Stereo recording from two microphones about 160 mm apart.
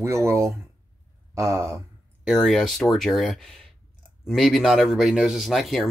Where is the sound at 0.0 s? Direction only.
15° right (ahead or behind).